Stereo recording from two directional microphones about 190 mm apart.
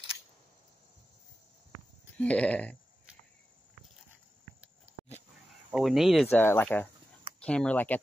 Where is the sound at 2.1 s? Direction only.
5° left (ahead or behind).